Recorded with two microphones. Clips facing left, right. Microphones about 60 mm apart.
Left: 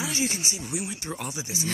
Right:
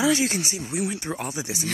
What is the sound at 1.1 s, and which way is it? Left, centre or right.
Speech, right.